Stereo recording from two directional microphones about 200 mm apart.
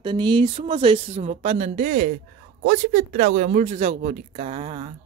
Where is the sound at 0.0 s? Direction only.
25° right (ahead or behind).